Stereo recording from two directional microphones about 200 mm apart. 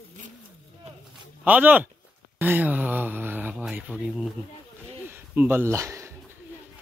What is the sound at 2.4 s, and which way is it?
Speech, 10° right (ahead or behind).